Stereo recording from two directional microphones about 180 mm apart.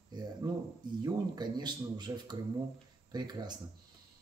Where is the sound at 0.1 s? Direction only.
25° right (ahead or behind).